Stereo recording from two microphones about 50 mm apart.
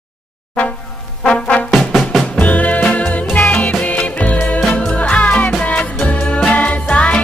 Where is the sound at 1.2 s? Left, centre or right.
Left.